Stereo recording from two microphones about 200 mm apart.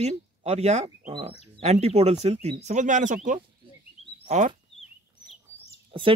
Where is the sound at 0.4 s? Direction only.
30° right (ahead or behind).